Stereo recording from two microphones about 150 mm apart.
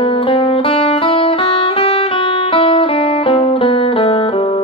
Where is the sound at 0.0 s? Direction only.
35° left (ahead or behind).